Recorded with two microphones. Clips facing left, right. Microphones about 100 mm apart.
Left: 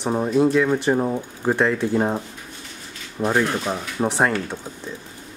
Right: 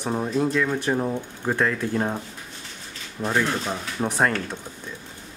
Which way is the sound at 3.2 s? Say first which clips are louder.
Left 3 dB; 15° left (ahead or behind).